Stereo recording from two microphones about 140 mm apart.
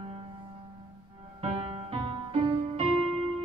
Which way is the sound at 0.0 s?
40° right (ahead or behind).